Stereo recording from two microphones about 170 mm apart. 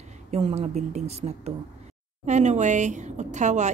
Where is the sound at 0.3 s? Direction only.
40° right (ahead or behind).